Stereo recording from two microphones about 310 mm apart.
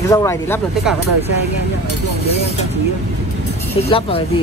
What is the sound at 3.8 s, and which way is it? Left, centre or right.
Speech, centre.